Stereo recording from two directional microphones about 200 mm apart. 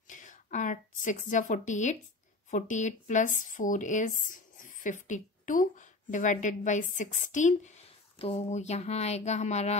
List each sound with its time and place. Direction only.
0.1 s a woman's voice: 40° left (ahead or behind)